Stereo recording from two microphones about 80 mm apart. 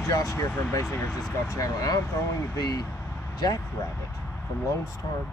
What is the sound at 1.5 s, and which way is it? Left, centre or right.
Speech, left.